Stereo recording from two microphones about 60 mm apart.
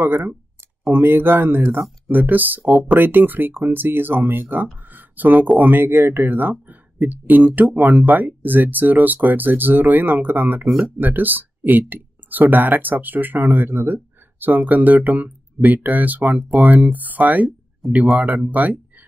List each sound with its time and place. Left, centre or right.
0.0 s speech: right
4.8 s a sound: right
5.6 s speech: right